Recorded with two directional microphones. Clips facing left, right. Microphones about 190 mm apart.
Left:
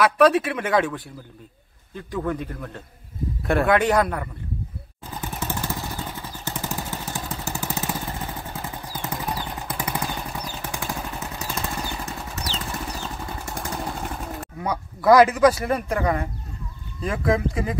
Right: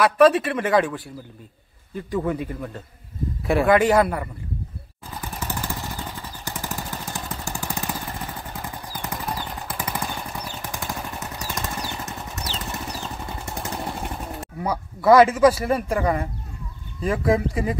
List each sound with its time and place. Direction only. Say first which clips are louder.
0.0 s speech: right 1 dB; centre (ahead or behind)
5.6 s vehicle: left 1 dB; 15° left (ahead or behind)
7.4 s lawn mower: left 1 dB; 15° right (ahead or behind)
7.7 s lawn mower: left 1 dB; 10° left (ahead or behind)
8.5 s vehicle: left 1 dB; 15° right (ahead or behind)
9.1 s a sound: left 1 dB; 15° left (ahead or behind)
9.8 s vehicle: left 1 dB; 10° left (ahead or behind)
11.0 s vehicle: left 1 dB; centre (ahead or behind)
17.0 s speech: right 2 dB; 5° right (ahead or behind)